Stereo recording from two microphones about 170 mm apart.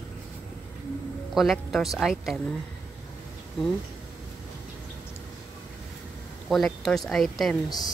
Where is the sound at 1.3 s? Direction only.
Centre (ahead or behind).